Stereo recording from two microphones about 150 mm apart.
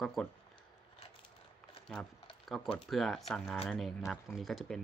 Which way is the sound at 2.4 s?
Centre (ahead or behind).